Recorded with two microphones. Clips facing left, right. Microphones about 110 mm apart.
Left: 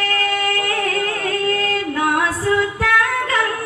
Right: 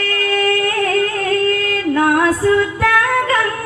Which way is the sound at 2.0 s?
40° right (ahead or behind).